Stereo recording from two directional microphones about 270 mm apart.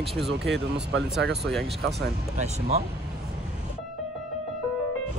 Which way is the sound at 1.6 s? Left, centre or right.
Right.